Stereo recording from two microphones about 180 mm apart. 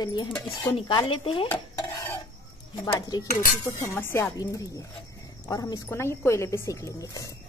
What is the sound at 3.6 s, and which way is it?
Speech, 20° left (ahead or behind).